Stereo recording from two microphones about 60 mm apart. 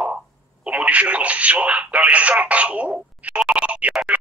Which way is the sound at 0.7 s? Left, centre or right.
Right.